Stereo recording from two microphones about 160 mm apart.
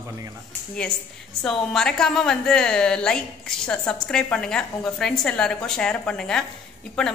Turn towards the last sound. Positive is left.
turn(degrees=5)  # may be behind; listen again after turning